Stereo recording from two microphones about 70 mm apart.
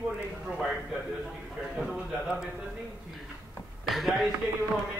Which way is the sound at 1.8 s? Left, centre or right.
Centre.